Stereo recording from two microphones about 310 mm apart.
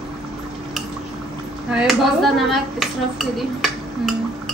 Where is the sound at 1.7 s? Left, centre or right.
Centre.